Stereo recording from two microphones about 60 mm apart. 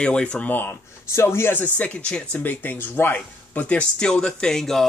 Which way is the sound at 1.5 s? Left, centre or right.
Left.